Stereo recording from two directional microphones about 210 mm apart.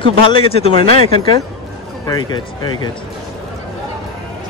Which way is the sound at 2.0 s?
20° left (ahead or behind).